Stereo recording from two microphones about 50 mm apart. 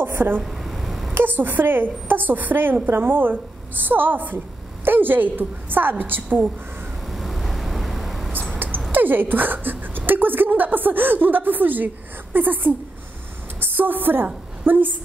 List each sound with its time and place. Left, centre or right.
0.0 s a woman's voice: right
0.4 s a sound: centre
1.1 s speech: right
7.1 s vehicle: centre
8.9 s a woman's voice: right